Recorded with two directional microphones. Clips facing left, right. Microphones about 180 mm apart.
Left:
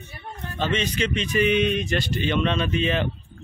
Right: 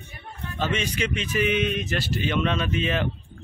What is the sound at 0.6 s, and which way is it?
Speech, 10° right (ahead or behind).